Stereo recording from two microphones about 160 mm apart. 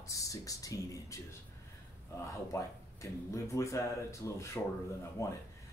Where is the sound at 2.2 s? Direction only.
20° left (ahead or behind).